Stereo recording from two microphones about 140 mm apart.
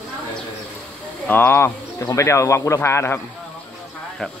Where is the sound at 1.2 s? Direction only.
15° left (ahead or behind).